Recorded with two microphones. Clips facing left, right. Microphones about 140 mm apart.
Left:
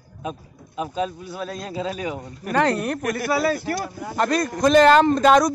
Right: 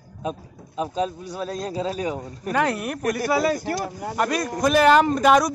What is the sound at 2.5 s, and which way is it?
Speech, 5° right (ahead or behind).